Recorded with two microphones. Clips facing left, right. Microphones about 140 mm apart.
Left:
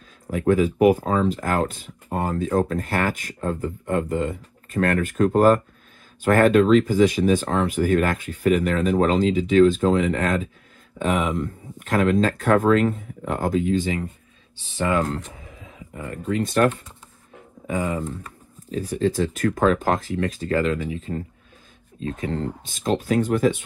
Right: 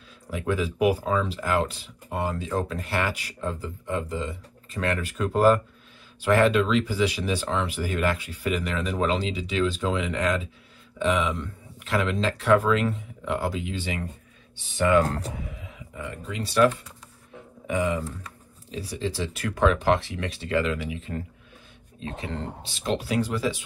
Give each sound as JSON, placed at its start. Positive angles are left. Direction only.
{"t": 0.3, "sound": "speech", "side_deg": 45}
{"t": 14.8, "sound": "speech", "side_deg": 30}
{"t": 15.0, "sound": "speech", "side_deg": -35}
{"t": 15.4, "sound": "roaring cats", "side_deg": 35}
{"t": 16.4, "sound": "speech", "side_deg": 50}
{"t": 17.6, "sound": "speech", "side_deg": 35}
{"t": 18.9, "sound": "speech", "side_deg": 45}
{"t": 22.0, "sound": "speech", "side_deg": -30}
{"t": 23.0, "sound": "speech", "side_deg": 50}